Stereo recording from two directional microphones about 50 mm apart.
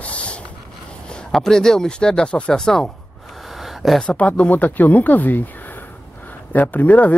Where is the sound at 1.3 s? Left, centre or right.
Centre.